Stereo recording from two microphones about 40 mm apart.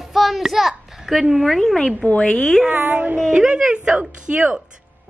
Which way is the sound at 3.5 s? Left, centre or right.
Right.